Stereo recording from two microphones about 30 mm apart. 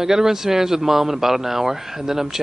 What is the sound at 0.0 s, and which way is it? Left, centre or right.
Speech, centre.